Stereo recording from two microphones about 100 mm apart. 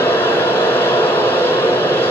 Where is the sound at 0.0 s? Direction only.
20° left (ahead or behind).